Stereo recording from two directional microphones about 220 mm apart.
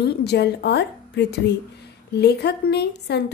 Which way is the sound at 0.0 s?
50° left (ahead or behind).